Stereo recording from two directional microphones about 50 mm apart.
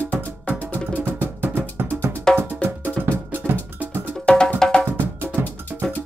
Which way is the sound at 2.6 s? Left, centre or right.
Left.